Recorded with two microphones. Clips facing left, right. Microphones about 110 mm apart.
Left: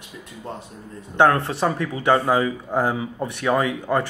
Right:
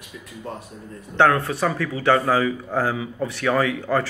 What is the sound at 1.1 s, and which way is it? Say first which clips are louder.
A man's voice: left 1 dB; 20° left (ahead or behind).